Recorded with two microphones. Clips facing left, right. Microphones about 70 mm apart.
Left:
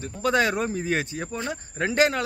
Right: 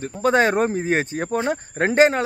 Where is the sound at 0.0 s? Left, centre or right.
Right.